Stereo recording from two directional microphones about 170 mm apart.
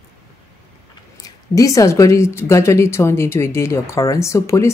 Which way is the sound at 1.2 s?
20° left (ahead or behind).